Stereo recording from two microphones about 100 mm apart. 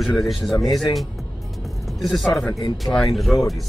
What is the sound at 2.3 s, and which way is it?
Speech, 30° left (ahead or behind).